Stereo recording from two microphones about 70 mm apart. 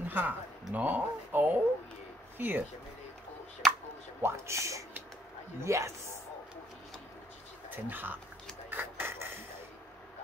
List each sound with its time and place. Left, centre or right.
0.1 s speech: right
3.6 s a sound: centre
4.2 s speech: right
7.7 s speech: right
8.6 s rub: right